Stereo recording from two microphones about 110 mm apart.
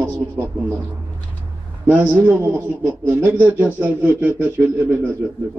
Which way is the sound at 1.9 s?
15° right (ahead or behind).